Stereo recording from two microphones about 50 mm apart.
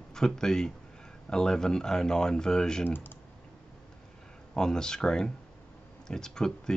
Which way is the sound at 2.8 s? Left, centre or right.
Left.